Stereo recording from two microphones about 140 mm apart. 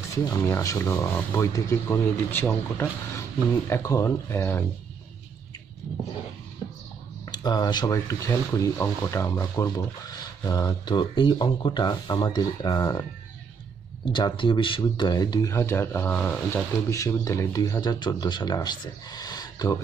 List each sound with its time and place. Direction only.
0.1 s speech: 20° left (ahead or behind)
7.2 s speech: 30° left (ahead or behind)
14.1 s speech: 35° left (ahead or behind)